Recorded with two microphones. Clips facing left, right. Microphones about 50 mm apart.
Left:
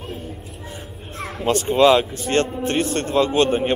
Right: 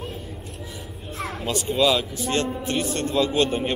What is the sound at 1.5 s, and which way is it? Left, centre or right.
A man's voice, left.